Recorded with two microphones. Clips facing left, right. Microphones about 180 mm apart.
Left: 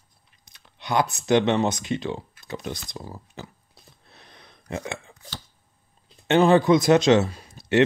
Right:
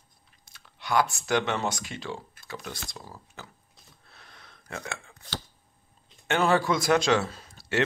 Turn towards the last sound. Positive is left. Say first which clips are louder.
# left 8 dB
turn(degrees=20)  # may be behind; listen again after turning